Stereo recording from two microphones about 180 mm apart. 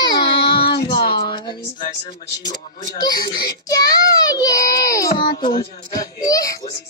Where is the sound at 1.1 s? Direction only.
25° left (ahead or behind).